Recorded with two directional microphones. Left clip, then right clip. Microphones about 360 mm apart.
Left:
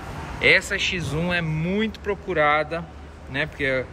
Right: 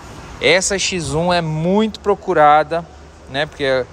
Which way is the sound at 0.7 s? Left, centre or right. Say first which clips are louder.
Right 6 dB; centre.